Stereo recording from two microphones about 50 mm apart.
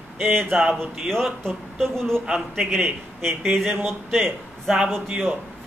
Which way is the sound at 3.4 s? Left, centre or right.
Centre.